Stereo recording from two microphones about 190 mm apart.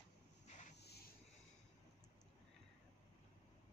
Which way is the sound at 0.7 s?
60° left (ahead or behind).